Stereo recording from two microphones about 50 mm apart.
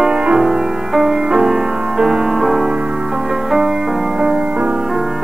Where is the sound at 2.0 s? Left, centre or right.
Centre.